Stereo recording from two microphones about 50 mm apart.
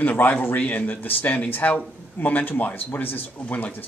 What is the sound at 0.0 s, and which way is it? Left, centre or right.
Speech, left.